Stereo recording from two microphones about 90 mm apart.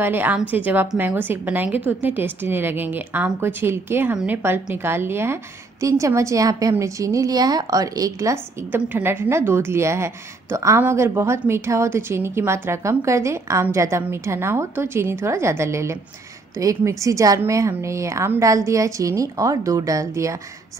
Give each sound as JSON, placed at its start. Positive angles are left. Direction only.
{"t": 0.0, "sound": "a woman's voice", "side_deg": -25}
{"t": 8.7, "sound": "a woman's voice", "side_deg": -25}